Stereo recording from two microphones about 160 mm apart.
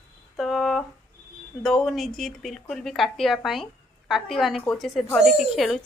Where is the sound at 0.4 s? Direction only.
Centre (ahead or behind).